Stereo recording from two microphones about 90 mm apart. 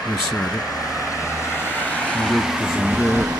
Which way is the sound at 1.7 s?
20° left (ahead or behind).